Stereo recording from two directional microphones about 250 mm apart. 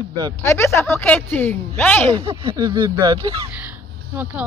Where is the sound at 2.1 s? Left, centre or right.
Right.